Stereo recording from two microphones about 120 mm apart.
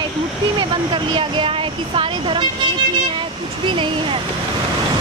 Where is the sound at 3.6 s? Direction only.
40° right (ahead or behind).